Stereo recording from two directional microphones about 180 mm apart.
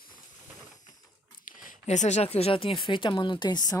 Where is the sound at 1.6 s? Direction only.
40° left (ahead or behind); by 3.8 s 25° left (ahead or behind).